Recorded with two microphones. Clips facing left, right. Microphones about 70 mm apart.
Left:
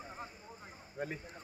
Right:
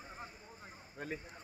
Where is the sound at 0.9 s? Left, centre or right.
Centre.